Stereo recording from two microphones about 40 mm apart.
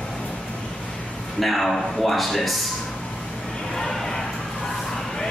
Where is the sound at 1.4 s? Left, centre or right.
Centre.